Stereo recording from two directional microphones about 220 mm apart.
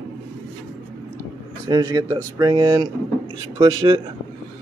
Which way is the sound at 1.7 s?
15° right (ahead or behind).